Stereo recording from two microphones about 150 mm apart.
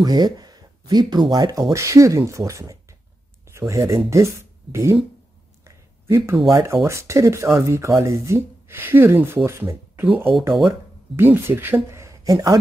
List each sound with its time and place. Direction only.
0.0 s speech: 25° right (ahead or behind)
5.6 s a sound: 20° right (ahead or behind)
6.5 s speech: 20° right (ahead or behind)